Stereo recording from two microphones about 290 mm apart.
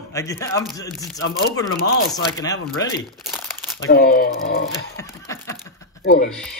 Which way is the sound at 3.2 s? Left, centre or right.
Centre.